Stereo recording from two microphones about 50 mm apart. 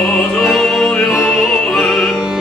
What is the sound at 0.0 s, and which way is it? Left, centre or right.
Music, centre.